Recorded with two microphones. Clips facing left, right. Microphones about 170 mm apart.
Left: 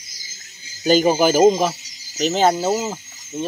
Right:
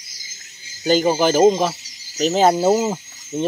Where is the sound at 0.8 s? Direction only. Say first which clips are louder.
Left 1 dB; 15° left (ahead or behind).